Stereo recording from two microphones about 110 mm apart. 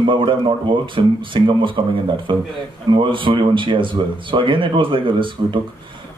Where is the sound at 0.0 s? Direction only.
50° right (ahead or behind).